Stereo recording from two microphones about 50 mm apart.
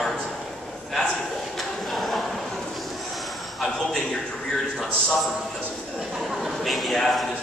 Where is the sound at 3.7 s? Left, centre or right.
Centre.